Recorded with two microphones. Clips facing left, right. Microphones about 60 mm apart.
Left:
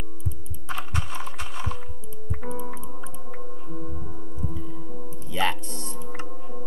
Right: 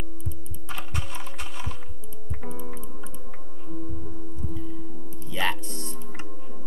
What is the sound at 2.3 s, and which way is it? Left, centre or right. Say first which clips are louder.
Music: left 3 dB; centre.